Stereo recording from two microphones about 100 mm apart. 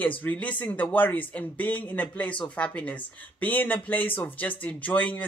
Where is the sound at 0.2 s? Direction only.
15° left (ahead or behind).